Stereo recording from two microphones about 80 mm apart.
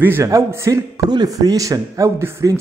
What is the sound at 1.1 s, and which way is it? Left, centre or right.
Speech, right.